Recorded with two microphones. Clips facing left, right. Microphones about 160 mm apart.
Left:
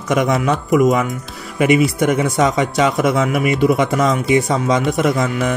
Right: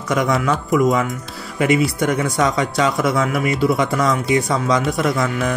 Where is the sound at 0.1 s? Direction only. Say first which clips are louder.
Left 2 dB; 20° left (ahead or behind).